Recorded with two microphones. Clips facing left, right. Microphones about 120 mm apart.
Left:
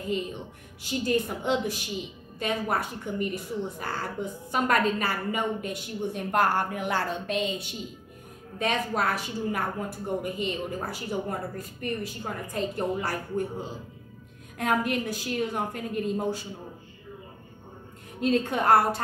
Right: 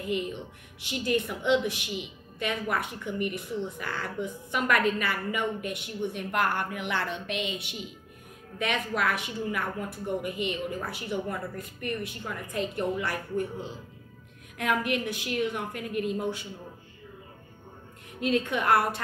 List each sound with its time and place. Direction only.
0.0 s a woman's voice: 35° left (ahead or behind)
18.2 s a woman's voice: 35° left (ahead or behind)